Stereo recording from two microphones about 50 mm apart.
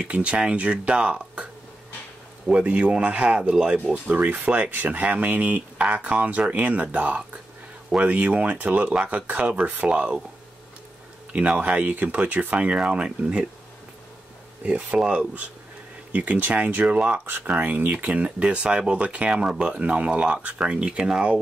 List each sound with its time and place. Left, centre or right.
0.0 s speech: right
3.9 s speech: right
11.3 s speech: right
14.6 s speech: right
17.5 s speech: right; by 21.4 s centre